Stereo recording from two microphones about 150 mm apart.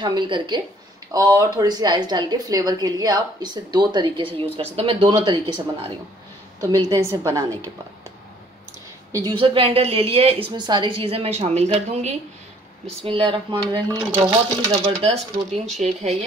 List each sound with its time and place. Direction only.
0.0 s a woman's voice: 30° right (ahead or behind)
6.9 s a woman's voice: 20° right (ahead or behind)
9.1 s a woman's voice: 30° right (ahead or behind); by 12.2 s 50° right (ahead or behind)
12.8 s a woman's voice: 40° right (ahead or behind)
14.9 s speech: 40° right (ahead or behind)